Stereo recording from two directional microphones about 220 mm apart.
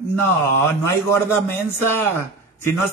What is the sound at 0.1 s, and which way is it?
Speech, 10° left (ahead or behind).